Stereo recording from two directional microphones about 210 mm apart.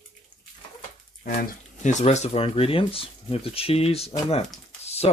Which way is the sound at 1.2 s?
45° left (ahead or behind).